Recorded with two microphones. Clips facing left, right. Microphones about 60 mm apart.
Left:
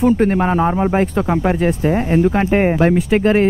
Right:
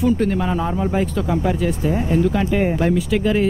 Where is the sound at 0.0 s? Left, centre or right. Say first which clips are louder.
Left 4 dB; left.